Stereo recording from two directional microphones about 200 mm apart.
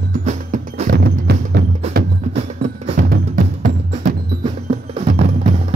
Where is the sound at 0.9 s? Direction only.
55° right (ahead or behind).